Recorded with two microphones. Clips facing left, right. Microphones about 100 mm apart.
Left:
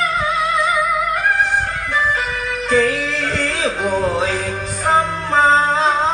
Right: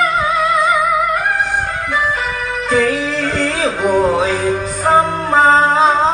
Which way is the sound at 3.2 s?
35° right (ahead or behind).